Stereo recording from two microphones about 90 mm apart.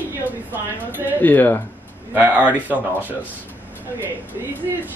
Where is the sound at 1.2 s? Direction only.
20° left (ahead or behind).